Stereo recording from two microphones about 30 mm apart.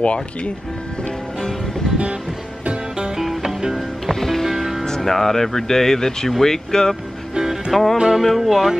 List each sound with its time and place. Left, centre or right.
0.0 s speech: left
3.2 s music: centre
4.1 s music: centre
4.5 s music: centre
4.8 s speech: centre
7.7 s speech: centre
8.1 s music: centre